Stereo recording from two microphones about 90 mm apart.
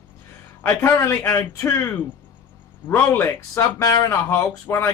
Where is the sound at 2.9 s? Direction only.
25° left (ahead or behind).